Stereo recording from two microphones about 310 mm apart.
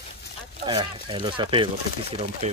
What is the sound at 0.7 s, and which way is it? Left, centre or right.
Speech, centre.